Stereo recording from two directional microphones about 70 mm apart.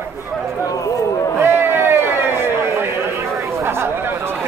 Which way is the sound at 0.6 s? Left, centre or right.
Left.